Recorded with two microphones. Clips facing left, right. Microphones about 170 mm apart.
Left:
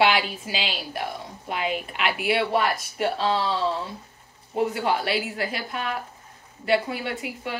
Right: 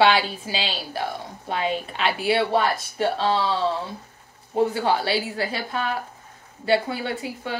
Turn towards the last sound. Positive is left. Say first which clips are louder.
# right 2 dB
turn(degrees=-30)  # may be behind; listen again after turning